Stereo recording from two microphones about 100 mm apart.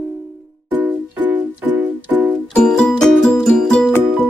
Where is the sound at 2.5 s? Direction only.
10° left (ahead or behind).